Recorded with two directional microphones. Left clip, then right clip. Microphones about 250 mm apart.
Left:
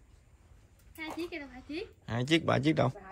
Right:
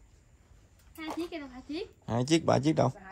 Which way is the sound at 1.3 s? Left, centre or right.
Right.